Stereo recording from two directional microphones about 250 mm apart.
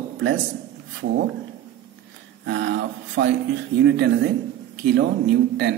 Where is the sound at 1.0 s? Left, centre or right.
Right.